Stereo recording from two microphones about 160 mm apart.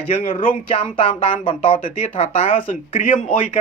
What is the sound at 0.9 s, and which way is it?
Speech, 30° left (ahead or behind).